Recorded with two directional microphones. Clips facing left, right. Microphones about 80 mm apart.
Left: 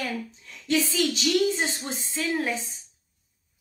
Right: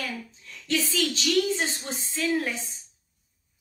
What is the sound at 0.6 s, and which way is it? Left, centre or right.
A woman's voice, centre.